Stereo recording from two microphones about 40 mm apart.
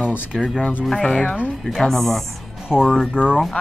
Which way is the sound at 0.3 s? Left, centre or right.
Centre.